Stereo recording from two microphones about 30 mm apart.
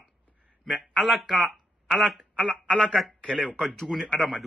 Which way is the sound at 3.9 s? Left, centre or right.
Centre.